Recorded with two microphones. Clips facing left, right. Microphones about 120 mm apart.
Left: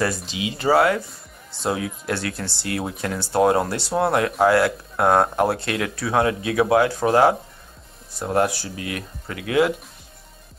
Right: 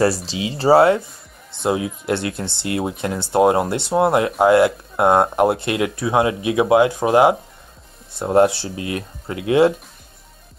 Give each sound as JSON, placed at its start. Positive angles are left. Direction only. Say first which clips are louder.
{"t": 0.0, "sound": "speech", "louder": "right 5 dB", "side_deg": -30}